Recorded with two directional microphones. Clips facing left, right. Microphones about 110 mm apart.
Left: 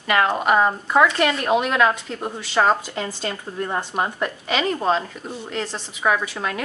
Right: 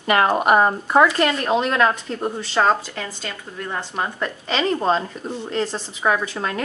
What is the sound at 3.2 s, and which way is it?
Speech, 25° left (ahead or behind).